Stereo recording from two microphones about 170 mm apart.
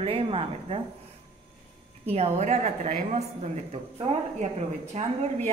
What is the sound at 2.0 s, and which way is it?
A woman's voice, 35° right (ahead or behind).